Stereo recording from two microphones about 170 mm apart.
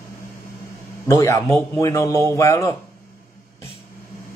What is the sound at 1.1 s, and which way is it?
A man's voice, 20° left (ahead or behind).